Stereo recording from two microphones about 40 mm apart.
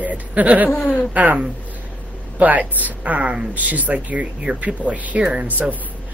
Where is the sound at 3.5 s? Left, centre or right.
Right.